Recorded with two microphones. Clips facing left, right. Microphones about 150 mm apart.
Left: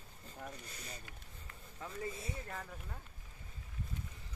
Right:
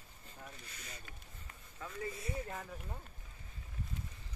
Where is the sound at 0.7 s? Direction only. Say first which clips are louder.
Left 3 dB; 40° left (ahead or behind).